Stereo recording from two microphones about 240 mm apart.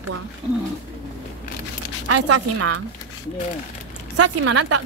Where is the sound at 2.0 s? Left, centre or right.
Right.